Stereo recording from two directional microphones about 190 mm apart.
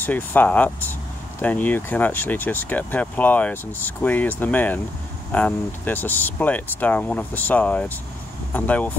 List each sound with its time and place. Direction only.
0.0 s speech: 10° left (ahead or behind)